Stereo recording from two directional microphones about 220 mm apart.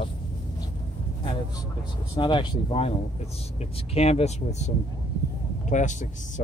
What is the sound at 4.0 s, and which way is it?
Speech, 30° left (ahead or behind).